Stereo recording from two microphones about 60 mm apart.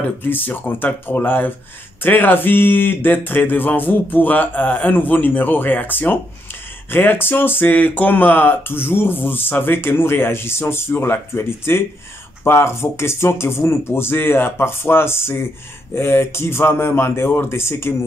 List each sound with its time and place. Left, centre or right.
0.2 s speech: left